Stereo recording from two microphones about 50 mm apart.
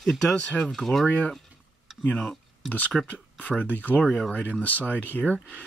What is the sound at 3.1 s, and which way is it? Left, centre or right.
Speech, left.